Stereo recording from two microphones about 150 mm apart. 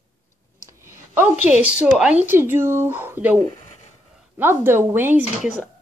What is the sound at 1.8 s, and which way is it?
Speech, 5° right (ahead or behind).